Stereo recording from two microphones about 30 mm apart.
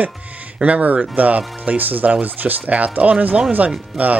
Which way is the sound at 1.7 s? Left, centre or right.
Right.